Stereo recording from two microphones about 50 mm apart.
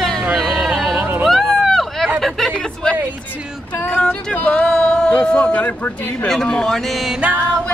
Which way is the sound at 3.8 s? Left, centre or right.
Centre.